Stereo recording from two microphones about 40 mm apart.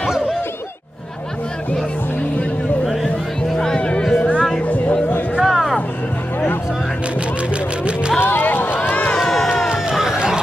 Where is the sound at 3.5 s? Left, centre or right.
Centre.